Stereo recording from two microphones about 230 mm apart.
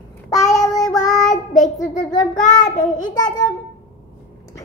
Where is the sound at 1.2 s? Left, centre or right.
Left.